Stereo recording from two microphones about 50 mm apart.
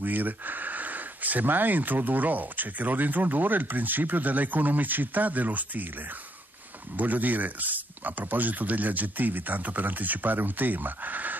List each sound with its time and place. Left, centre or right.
0.0 s speech: right
7.0 s speech: right